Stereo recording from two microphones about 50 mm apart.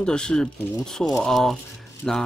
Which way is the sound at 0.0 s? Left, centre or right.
Centre.